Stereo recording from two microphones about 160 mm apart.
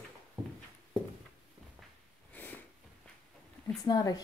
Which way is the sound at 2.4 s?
10° left (ahead or behind).